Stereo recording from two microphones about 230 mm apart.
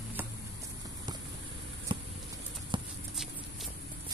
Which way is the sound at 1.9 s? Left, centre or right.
Right.